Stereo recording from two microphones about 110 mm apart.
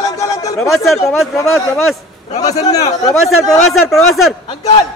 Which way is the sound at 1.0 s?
30° left (ahead or behind).